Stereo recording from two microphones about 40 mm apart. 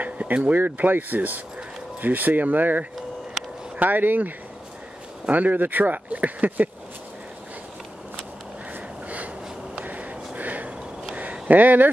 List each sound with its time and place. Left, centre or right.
0.2 s speech: right
5.3 s speech: right
9.8 s a sound: right